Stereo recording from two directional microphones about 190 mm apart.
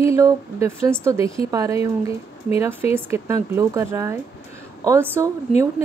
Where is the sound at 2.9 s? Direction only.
10° right (ahead or behind).